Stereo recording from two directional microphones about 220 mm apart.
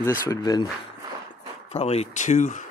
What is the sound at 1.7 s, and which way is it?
Speech, 30° left (ahead or behind).